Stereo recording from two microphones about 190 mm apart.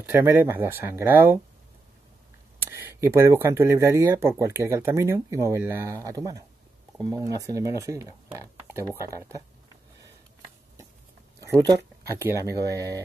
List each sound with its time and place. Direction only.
0.0 s speech: 10° right (ahead or behind)
2.6 s speech: 15° right (ahead or behind)
11.6 s speech: 20° right (ahead or behind)